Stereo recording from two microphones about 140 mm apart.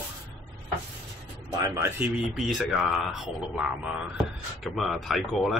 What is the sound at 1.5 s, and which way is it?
Speech, 25° right (ahead or behind).